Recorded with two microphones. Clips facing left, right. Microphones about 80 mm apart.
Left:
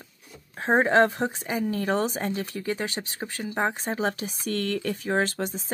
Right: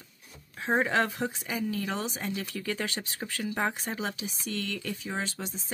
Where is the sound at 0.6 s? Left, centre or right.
Left.